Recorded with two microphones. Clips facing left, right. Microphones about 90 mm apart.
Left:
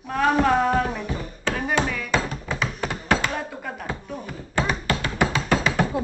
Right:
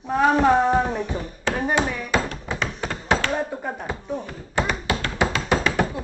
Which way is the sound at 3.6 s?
20° right (ahead or behind).